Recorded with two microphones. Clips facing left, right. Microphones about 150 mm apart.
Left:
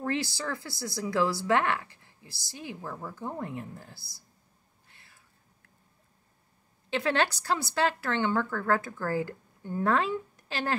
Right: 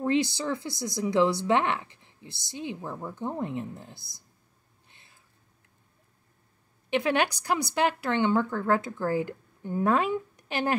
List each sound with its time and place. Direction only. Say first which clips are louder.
0.0 s speech: right 5 dB; 20° right (ahead or behind)
4.8 s a sound: even; 20° right (ahead or behind)
6.9 s speech: right 2 dB; 15° right (ahead or behind)